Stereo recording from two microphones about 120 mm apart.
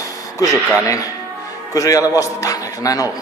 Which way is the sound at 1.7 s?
30° left (ahead or behind).